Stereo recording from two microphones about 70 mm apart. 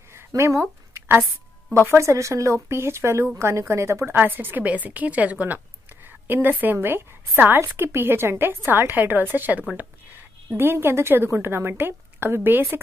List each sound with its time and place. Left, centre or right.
0.3 s a sound: right
1.7 s a woman's voice: right
4.2 s a woman's voice: right